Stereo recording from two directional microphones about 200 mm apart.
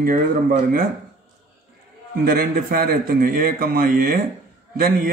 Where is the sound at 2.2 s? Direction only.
45° right (ahead or behind).